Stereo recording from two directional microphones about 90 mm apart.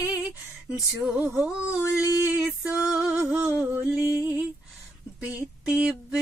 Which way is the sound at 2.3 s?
15° right (ahead or behind).